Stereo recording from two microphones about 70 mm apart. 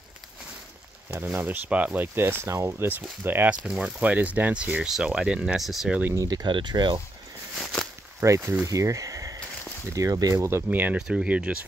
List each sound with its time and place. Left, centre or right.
1.1 s speech: right
2.9 s speech: right
3.6 s speech: centre
6.1 s speech: right
8.2 s speech: right
8.6 s a sound: right
9.9 s speech: right
10.3 s speech: right
10.7 s speech: right
11.0 s speech: centre